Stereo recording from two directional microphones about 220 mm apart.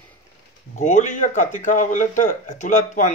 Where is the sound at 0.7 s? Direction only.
35° left (ahead or behind).